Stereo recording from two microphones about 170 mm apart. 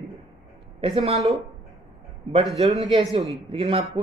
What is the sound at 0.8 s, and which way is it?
Speech, 35° right (ahead or behind).